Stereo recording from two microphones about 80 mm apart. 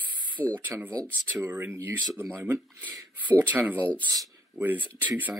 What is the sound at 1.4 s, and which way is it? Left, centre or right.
Speech, right.